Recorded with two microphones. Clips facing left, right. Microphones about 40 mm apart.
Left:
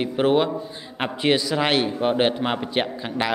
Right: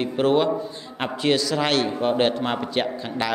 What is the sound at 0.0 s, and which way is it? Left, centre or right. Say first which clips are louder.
A man's voice: even; centre.